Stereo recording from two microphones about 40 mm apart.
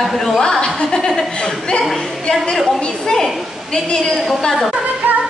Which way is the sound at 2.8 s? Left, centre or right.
Centre.